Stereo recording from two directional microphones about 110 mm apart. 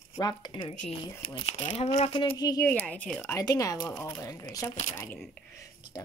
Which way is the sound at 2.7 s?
15° left (ahead or behind).